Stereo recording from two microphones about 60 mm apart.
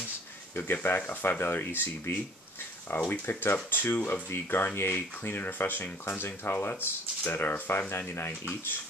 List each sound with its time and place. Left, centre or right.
0.8 s speech: left